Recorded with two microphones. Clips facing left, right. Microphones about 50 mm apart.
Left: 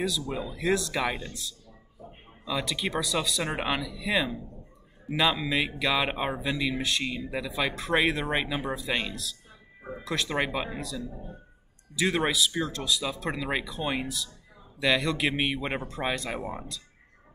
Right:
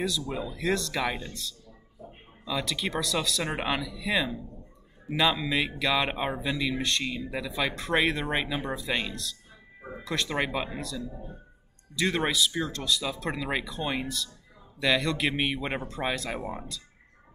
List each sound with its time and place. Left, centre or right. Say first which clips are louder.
0.3 s speech: left 1 dB; centre